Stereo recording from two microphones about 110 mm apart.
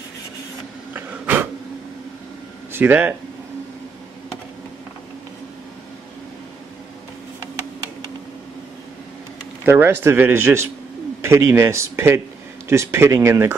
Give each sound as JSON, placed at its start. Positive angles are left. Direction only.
{"t": 0.9, "sound": "a sound", "side_deg": -20}
{"t": 2.7, "sound": "speech", "side_deg": -15}
{"t": 9.7, "sound": "speech", "side_deg": -20}